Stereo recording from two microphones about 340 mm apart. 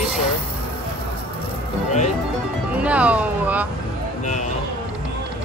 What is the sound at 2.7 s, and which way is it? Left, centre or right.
Speech, centre.